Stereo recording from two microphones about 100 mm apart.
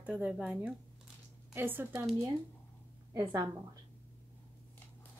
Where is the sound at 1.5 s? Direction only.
20° right (ahead or behind).